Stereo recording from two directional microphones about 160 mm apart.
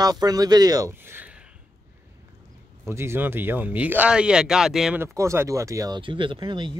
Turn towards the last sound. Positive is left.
turn(degrees=-30)  # may be behind; listen again after turning